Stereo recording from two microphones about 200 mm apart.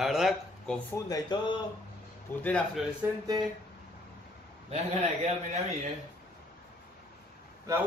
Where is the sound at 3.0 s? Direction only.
10° right (ahead or behind).